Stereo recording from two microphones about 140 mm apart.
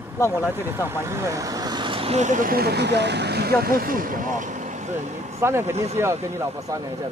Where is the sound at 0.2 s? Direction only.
20° left (ahead or behind).